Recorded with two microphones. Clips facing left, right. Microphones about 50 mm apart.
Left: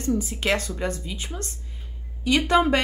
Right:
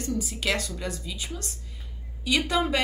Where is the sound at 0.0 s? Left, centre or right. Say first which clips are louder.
Left 4 dB; left.